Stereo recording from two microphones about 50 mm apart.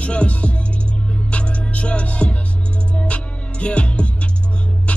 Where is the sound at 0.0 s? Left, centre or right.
Left.